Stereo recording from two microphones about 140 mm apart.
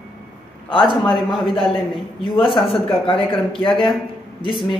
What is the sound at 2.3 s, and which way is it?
Speech, 35° left (ahead or behind).